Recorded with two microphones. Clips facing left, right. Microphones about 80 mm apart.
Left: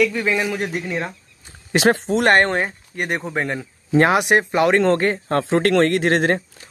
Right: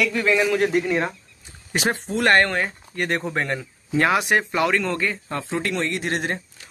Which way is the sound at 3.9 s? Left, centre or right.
Left.